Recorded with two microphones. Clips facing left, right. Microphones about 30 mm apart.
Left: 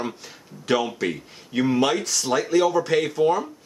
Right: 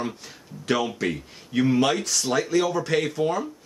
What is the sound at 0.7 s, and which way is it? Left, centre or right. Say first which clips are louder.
Speech: left 2 dB; centre.